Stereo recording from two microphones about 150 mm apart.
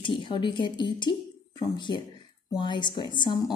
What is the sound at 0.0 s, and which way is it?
A woman's voice, 35° left (ahead or behind).